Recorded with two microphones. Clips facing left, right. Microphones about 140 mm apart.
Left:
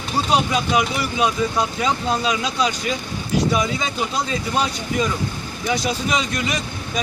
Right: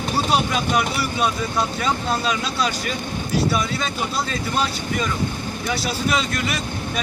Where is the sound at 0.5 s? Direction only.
10° left (ahead or behind).